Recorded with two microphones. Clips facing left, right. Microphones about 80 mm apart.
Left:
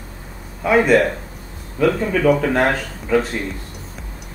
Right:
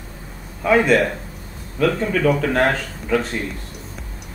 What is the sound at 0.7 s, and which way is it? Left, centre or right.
Speech, centre.